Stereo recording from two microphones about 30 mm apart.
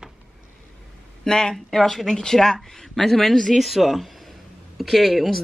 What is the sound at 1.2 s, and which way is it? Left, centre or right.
Speech, left.